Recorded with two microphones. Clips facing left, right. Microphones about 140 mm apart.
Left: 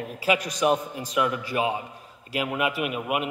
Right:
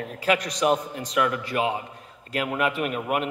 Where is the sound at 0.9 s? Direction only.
15° left (ahead or behind).